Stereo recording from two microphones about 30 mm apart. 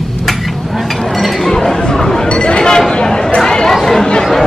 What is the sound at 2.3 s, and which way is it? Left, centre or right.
Speech, left.